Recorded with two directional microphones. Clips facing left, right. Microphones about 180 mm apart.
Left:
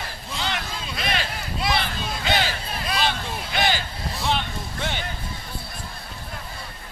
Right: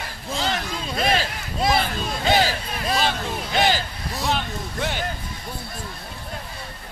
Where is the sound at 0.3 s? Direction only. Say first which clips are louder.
Right 4 dB; 35° right (ahead or behind).